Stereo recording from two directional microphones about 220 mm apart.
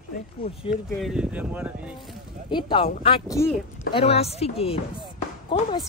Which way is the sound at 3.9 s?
25° left (ahead or behind).